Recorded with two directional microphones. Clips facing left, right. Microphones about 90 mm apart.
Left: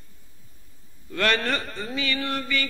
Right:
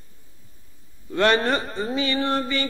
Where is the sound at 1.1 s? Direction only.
30° right (ahead or behind).